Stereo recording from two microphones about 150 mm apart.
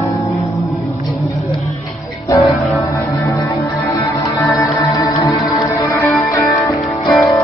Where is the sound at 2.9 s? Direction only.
20° left (ahead or behind).